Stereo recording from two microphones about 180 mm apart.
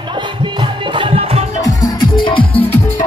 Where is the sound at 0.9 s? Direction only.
30° right (ahead or behind).